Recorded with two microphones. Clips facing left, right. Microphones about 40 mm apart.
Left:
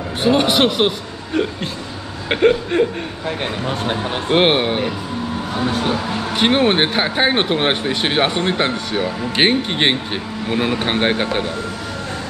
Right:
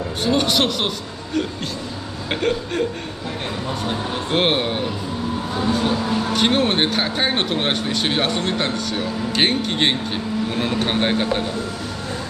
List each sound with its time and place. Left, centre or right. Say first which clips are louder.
0.2 s speech: left 4 dB; left